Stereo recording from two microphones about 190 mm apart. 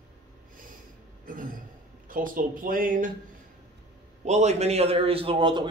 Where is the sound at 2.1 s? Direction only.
45° right (ahead or behind).